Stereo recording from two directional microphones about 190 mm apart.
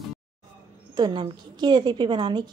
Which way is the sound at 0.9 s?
25° right (ahead or behind).